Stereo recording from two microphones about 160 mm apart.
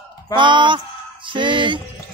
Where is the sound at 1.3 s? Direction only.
30° right (ahead or behind).